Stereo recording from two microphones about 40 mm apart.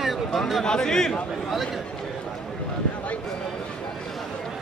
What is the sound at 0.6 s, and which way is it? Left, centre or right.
Speech, centre.